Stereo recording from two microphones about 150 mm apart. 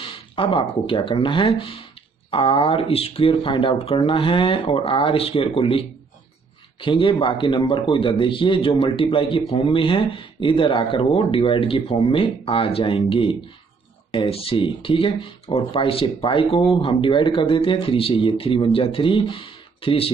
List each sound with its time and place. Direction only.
0.0 s a man's voice: 35° left (ahead or behind)